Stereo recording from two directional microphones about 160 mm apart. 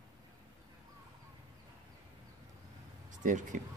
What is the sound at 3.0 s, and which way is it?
Speech, 55° right (ahead or behind).